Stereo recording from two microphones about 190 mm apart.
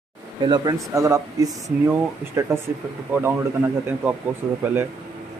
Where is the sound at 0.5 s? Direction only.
20° right (ahead or behind).